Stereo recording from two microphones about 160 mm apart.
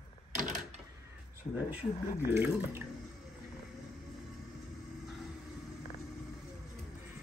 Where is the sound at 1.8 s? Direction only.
40° left (ahead or behind).